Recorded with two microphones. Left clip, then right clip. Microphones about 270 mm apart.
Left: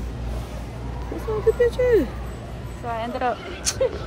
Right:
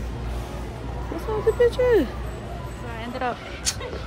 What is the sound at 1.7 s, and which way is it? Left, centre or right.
Speech, centre.